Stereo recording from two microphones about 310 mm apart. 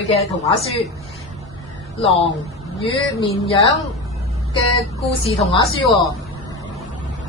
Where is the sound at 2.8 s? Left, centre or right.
Centre.